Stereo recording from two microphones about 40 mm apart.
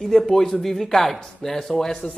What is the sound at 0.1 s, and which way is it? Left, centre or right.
A woman's voice, centre.